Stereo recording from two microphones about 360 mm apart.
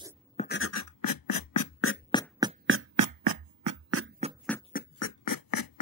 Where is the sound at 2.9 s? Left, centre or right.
Right.